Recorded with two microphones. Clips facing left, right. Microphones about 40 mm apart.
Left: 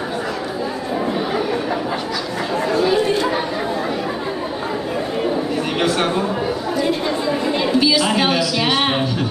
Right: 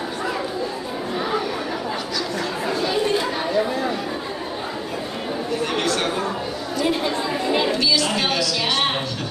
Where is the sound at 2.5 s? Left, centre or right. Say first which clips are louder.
Left 8 dB; centre.